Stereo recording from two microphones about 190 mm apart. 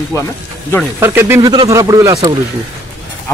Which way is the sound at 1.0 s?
10° right (ahead or behind).